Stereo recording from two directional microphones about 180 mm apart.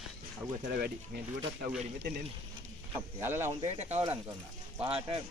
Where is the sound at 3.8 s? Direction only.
35° right (ahead or behind).